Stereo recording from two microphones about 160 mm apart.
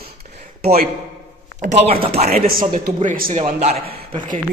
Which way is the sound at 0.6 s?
70° right (ahead or behind).